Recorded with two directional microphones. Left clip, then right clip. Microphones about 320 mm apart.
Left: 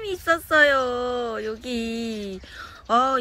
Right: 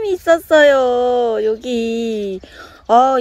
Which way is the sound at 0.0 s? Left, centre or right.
Centre.